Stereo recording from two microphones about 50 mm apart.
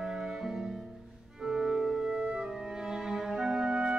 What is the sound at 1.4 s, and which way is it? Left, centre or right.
Organ, centre.